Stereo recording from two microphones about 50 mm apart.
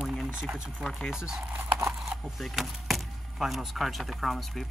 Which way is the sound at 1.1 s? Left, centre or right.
Centre.